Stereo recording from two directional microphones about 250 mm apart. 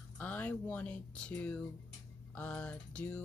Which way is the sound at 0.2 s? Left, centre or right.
Centre.